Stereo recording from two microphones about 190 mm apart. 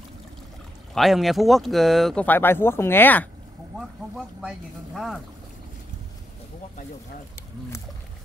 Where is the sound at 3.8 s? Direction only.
5° right (ahead or behind).